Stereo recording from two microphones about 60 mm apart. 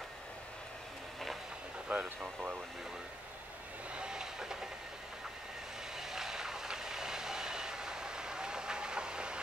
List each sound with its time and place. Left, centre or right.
1.9 s speech: right
3.9 s vehicle: centre
5.9 s vehicle: centre